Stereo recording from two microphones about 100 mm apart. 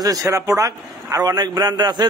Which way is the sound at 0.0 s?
35° right (ahead or behind).